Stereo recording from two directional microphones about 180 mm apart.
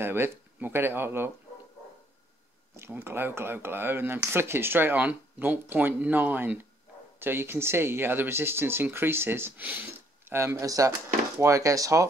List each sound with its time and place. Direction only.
0.0 s speech: 10° right (ahead or behind)
2.7 s speech: 10° right (ahead or behind)